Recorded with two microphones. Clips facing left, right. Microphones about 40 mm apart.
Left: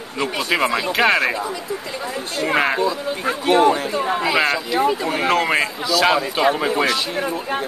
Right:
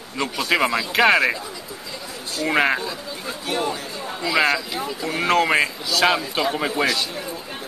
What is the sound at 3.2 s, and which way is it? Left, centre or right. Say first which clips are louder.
Speech: left 10 dB; left.